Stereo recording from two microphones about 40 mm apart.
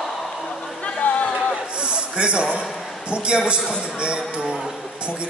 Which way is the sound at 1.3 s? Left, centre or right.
Right.